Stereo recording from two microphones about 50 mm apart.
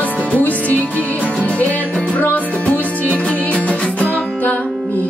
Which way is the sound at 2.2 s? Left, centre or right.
Left.